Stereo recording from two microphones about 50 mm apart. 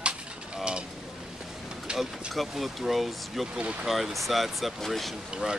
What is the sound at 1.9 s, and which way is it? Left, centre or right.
Vehicle, right.